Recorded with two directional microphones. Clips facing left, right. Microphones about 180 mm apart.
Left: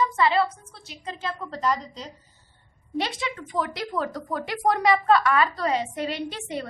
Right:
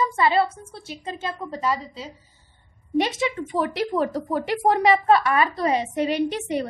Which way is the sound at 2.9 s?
20° right (ahead or behind).